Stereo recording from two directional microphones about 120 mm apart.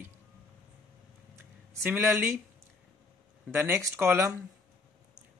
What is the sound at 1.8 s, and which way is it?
Speech, 15° right (ahead or behind).